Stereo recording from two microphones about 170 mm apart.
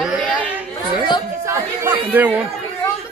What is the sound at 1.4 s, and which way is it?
Speech, 15° right (ahead or behind).